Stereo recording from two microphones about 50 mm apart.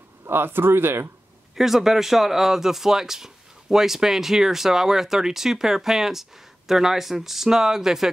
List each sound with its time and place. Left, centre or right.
0.3 s speech: right
1.5 s speech: centre